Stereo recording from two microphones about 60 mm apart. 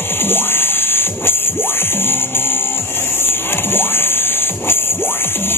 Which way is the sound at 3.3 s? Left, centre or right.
Left.